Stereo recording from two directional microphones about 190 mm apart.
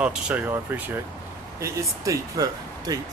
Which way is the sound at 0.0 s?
5° right (ahead or behind).